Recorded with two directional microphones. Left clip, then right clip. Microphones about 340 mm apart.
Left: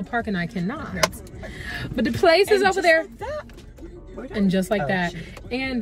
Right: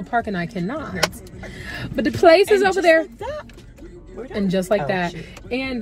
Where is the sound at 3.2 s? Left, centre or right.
Centre.